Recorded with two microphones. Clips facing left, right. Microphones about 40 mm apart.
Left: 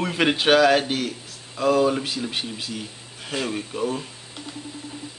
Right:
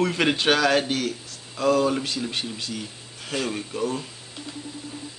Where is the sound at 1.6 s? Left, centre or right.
Centre.